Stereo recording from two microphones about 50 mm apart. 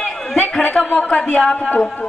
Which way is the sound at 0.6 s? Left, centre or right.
Left.